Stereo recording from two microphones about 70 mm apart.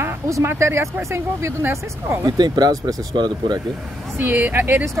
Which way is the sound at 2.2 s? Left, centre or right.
Right.